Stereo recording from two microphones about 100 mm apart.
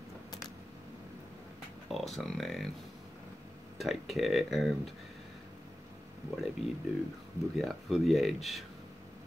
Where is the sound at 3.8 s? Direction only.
Centre (ahead or behind).